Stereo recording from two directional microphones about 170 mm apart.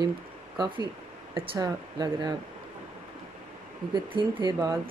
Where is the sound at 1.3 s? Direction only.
30° right (ahead or behind).